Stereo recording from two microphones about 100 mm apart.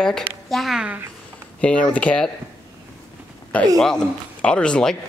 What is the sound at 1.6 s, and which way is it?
Speech, 10° left (ahead or behind).